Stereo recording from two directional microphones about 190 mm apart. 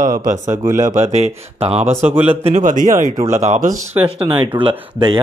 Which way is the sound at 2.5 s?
40° right (ahead or behind).